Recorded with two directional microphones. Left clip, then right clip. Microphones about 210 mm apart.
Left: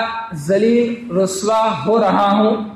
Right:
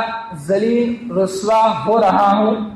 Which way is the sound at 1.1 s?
40° left (ahead or behind).